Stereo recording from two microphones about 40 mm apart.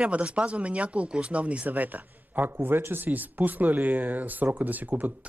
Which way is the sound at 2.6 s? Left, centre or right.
Right.